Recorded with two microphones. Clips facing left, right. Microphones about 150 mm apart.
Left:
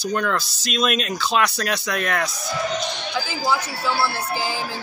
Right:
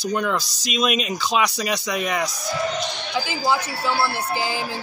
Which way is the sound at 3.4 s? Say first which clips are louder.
Even; 20° right (ahead or behind).